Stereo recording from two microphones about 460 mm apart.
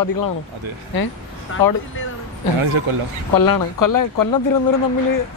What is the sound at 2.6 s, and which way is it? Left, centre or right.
Speech, right.